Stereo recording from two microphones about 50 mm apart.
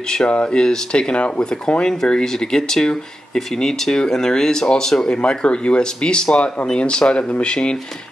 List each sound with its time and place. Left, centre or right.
0.1 s speech: centre